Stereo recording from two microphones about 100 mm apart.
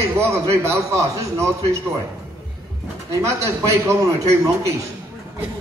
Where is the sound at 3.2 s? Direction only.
30° right (ahead or behind).